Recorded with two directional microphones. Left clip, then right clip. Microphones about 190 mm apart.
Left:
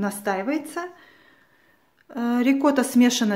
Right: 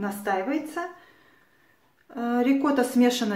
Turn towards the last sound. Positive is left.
turn(degrees=40)  # may be behind; listen again after turning